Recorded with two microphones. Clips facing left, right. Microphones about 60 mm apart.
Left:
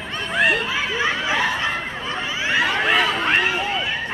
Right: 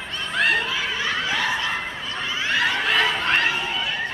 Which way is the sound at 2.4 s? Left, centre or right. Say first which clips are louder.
Left 3 dB; left.